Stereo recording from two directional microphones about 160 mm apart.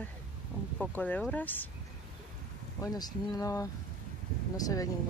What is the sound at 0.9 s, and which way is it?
Speech, 10° left (ahead or behind).